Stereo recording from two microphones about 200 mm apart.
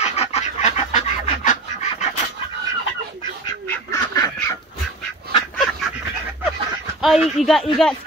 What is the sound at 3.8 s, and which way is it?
Duck, 20° left (ahead or behind).